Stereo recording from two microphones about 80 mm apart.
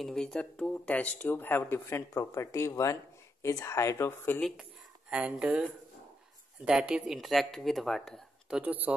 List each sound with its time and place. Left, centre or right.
0.0 s speech: centre; by 4.1 s left
4.4 s speech: centre
5.1 s speech: centre
8.5 s speech: centre